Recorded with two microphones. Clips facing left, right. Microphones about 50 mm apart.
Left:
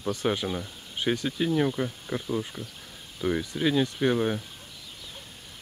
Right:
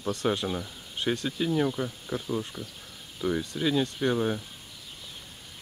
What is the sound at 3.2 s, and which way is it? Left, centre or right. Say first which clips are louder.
Speech: left 1 dB; centre.